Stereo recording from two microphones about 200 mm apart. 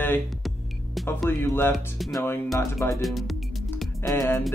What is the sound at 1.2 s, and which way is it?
Music, 10° left (ahead or behind).